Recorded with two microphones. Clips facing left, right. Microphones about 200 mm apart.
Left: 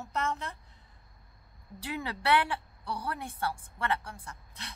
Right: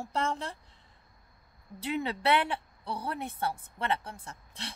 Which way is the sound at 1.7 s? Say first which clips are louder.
Right 4 dB; 20° right (ahead or behind).